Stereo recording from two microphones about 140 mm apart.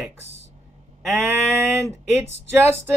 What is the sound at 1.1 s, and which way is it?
Speech, 20° right (ahead or behind).